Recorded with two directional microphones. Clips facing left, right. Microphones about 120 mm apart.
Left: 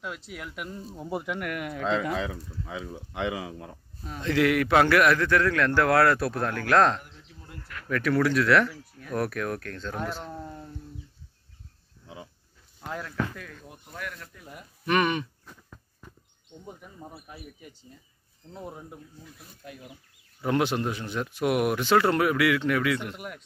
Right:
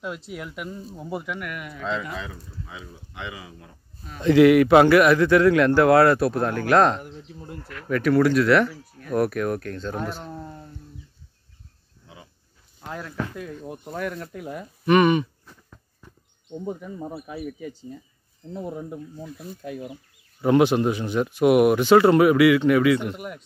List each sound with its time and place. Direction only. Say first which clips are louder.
0.4 s speech: right 3 dB; 5° right (ahead or behind)
1.4 s speech: left 2 dB; 65° left (ahead or behind)
2.0 s speech: left 4 dB; 80° left
3.1 s speech: left 7 dB; 90° left
4.2 s a man's voice: right 9 dB; 10° right (ahead or behind)
7.0 s a sound: right 10 dB; 30° right (ahead or behind)
7.9 s speech: right 5 dB; 5° right (ahead or behind)
12.8 s speech: right 1 dB; centre (ahead or behind)
13.1 s speech: right 2 dB; 25° right (ahead or behind); by 14.3 s 40° right (ahead or behind)
14.3 s speech: right 12 dB; 90° right
14.9 s speech: right 7 dB; 5° right (ahead or behind)
17.1 s speech: right 12 dB; 90° right
19.8 s chicken: right 11 dB; 25° right (ahead or behind)
20.4 s a man's voice: right 8 dB; 5° right (ahead or behind)